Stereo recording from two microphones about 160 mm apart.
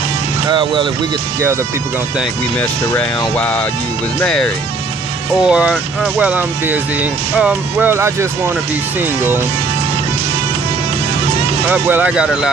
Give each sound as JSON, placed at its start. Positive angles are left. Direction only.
{"t": 0.5, "sound": "speech", "side_deg": -30}
{"t": 3.3, "sound": "speech", "side_deg": 10}
{"t": 5.5, "sound": "speech", "side_deg": -5}
{"t": 11.7, "sound": "speech", "side_deg": -10}